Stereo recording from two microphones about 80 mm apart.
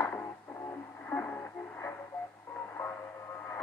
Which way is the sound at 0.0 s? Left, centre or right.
Left.